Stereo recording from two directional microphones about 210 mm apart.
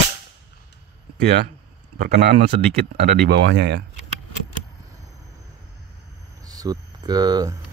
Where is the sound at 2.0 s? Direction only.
45° right (ahead or behind).